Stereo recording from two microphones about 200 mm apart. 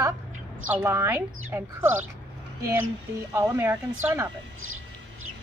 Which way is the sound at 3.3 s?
10° right (ahead or behind).